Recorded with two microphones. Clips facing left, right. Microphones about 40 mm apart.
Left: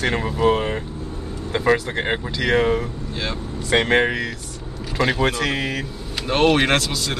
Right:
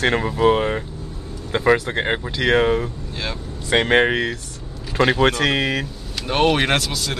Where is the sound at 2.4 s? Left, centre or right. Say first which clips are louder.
Right 2 dB; centre.